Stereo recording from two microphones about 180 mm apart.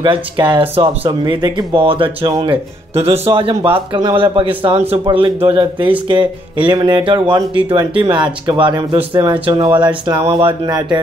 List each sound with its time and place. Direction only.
0.0 s speech: 25° right (ahead or behind)
2.9 s speech: 35° right (ahead or behind)